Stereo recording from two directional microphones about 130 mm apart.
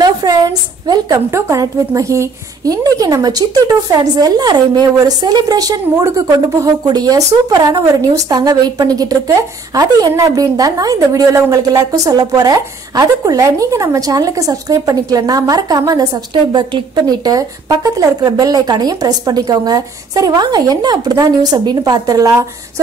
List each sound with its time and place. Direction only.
0.0 s a woman's voice: 30° right (ahead or behind)